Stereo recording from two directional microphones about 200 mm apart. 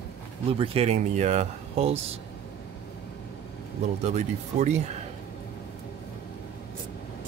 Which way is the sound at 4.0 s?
35° right (ahead or behind).